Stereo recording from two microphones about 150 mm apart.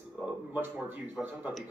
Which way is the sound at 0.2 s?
10° right (ahead or behind).